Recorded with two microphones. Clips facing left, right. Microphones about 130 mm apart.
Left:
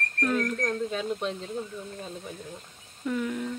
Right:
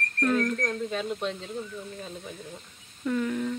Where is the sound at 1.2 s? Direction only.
40° left (ahead or behind).